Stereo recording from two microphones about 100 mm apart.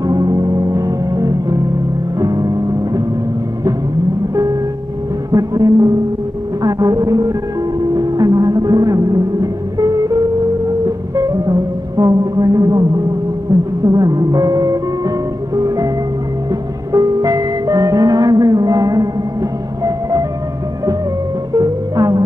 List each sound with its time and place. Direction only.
0.0 s music: 35° right (ahead or behind)
5.3 s music: 35° right (ahead or behind)
16.9 s music: 35° right (ahead or behind)
19.8 s vehicle: 35° right (ahead or behind)
21.5 s music: 35° right (ahead or behind)